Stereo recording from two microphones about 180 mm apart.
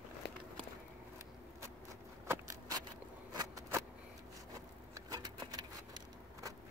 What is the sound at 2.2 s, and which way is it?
Vehicle, 15° right (ahead or behind).